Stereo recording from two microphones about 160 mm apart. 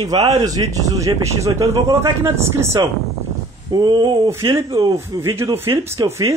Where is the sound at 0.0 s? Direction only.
25° right (ahead or behind).